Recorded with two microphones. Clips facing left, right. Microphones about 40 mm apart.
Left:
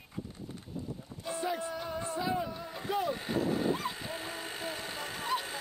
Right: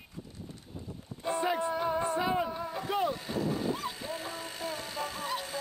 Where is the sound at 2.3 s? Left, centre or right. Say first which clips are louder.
Right 4 dB; right.